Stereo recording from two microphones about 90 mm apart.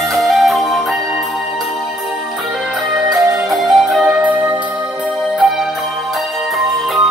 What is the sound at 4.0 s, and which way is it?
Music, 15° right (ahead or behind).